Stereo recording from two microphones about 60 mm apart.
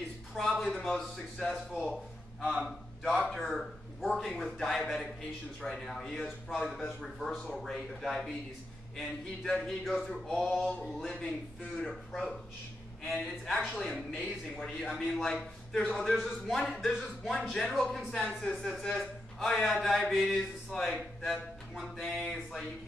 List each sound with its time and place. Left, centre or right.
0.4 s a man's voice: centre
18.8 s a man's voice: centre
22.0 s a sound: centre
22.3 s speech: centre